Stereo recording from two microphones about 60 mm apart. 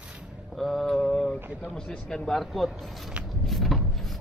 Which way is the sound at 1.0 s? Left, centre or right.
Centre.